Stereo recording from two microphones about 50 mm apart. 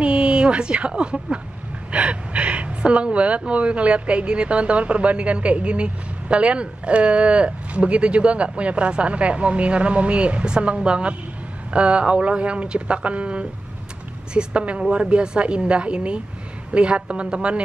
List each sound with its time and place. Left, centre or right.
0.0 s a woman's voice: right